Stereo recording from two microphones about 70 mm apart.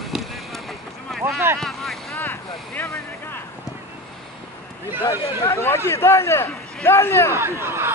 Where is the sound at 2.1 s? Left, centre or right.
Left.